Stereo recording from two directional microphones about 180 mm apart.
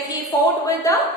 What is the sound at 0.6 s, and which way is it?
Speech, 15° left (ahead or behind).